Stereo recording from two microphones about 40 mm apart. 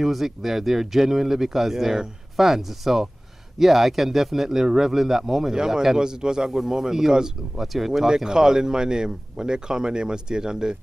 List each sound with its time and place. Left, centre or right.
0.0 s speech: centre
7.6 s speech: centre